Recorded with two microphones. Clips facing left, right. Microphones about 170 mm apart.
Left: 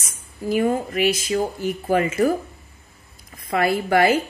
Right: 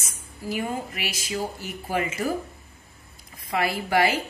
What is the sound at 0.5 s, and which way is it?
Speech, 50° left (ahead or behind).